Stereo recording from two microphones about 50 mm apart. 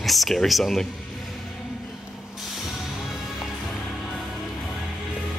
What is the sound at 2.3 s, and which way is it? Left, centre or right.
Music, centre.